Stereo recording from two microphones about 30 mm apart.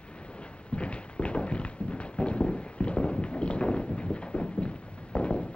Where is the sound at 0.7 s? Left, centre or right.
Left.